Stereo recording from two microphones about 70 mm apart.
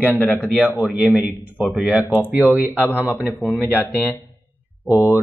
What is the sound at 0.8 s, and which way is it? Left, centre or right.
Speech, centre.